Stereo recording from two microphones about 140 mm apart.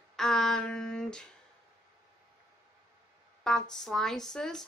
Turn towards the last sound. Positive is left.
turn(degrees=5)  # may be behind; listen again after turning